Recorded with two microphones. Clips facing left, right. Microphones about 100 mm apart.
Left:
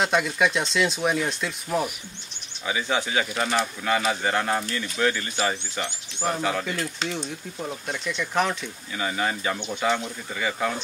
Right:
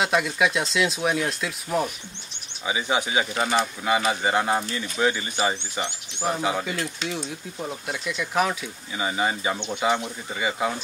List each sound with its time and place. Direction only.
0.0 s speech: centre (ahead or behind)
2.6 s speech: 15° right (ahead or behind)
8.9 s speech: 15° right (ahead or behind)